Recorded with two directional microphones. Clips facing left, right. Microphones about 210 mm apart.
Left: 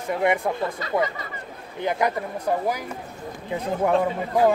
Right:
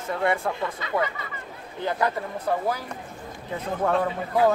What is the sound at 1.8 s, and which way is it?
Speech, 15° left (ahead or behind).